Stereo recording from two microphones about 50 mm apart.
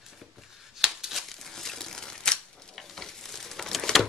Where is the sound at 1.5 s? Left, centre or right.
Centre.